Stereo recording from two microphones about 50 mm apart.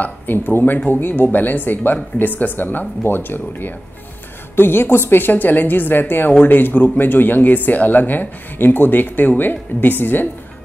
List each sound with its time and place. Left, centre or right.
0.0 s a woman's voice: left